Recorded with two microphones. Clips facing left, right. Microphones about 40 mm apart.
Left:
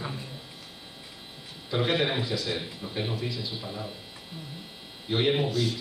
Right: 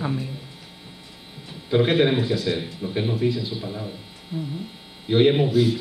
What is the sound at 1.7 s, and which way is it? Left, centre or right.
A man's voice, centre.